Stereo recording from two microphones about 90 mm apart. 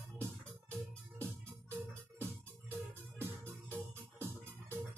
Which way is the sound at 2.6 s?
25° right (ahead or behind).